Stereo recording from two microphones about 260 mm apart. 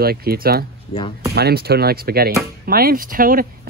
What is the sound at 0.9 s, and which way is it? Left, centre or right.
Speech, left.